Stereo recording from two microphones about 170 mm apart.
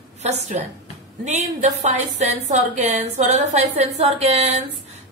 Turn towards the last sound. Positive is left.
turn(degrees=-40)  # may be behind; listen again after turning